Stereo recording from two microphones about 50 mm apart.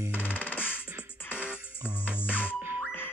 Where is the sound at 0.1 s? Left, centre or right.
Left.